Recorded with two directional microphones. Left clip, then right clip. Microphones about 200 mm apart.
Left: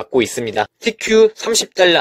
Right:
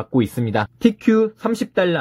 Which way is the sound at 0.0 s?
20° left (ahead or behind).